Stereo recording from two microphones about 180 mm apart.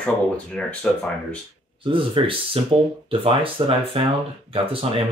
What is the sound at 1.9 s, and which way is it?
Speech, 30° right (ahead or behind).